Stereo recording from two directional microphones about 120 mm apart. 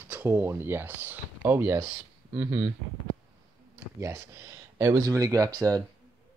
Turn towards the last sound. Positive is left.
turn(degrees=-30)  # may be behind; listen again after turning